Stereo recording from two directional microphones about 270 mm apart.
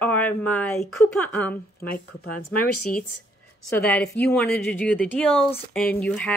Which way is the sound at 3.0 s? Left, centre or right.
Left.